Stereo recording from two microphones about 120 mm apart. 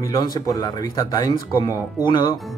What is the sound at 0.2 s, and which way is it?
Speech, 35° left (ahead or behind).